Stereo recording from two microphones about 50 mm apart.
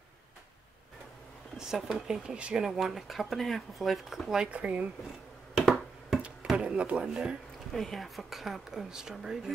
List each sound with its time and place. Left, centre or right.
1.7 s speech: centre
4.5 s speech: right
5.6 s finger snapping: centre
6.5 s speech: right
7.7 s speech: centre